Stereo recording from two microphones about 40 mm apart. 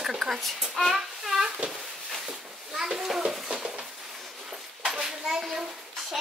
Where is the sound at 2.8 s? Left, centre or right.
Centre.